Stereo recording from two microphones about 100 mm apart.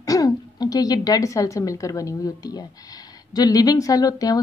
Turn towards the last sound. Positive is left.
turn(degrees=40)  # may be behind; listen again after turning